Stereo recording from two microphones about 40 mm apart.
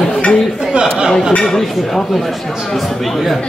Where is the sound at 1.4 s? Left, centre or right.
Centre.